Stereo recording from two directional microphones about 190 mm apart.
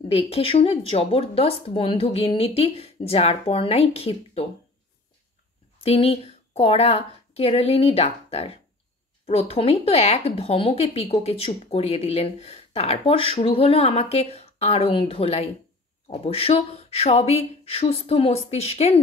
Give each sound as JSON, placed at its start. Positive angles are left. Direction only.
{"t": 0.1, "sound": "speech", "side_deg": 30}
{"t": 5.9, "sound": "speech", "side_deg": 30}